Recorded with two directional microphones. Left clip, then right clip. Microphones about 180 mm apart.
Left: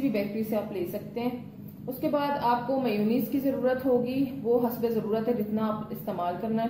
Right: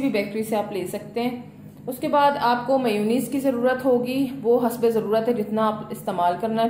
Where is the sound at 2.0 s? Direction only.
45° right (ahead or behind).